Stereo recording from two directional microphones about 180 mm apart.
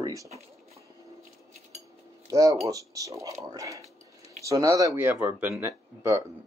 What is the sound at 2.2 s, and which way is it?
Speech, 20° right (ahead or behind).